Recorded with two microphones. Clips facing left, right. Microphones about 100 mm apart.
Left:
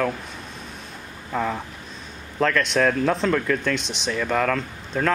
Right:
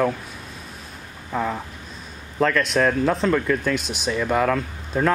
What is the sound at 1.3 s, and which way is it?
Speech, 5° right (ahead or behind).